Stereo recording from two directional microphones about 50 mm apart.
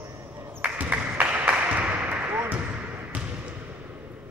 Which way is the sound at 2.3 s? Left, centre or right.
Right.